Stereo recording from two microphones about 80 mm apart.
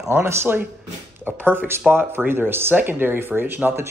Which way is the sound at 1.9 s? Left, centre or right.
Right.